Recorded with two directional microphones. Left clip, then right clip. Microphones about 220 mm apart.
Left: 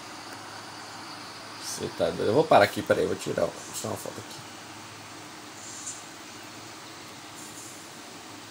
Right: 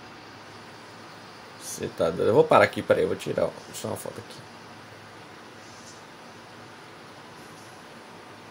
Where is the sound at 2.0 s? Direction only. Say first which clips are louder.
Right 4 dB; 10° right (ahead or behind).